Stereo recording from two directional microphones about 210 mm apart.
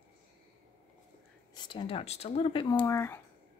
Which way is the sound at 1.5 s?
20° left (ahead or behind).